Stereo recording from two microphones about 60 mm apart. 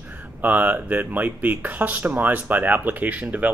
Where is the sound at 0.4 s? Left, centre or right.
Right.